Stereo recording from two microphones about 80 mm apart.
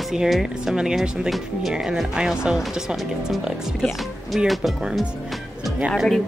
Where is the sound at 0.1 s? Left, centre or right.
Centre.